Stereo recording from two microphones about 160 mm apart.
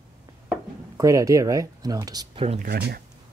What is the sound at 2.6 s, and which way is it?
Speech, 80° right.